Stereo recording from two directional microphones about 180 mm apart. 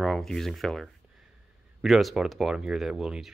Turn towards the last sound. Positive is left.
turn(degrees=0)  # may be behind; listen again after turning